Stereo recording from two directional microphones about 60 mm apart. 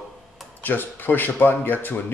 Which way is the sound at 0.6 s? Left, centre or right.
Left.